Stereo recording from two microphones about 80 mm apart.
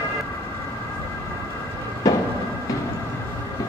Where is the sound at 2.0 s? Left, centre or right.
Left.